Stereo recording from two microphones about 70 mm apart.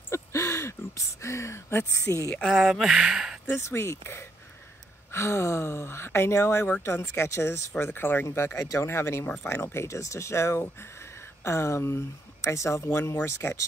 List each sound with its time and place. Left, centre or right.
0.1 s a sound: left
2.4 s speech: centre
3.4 s speech: left
8.3 s speech: left